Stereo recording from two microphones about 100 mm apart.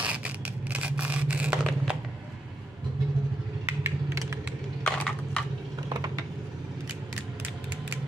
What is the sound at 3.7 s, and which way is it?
Typing, 30° right (ahead or behind).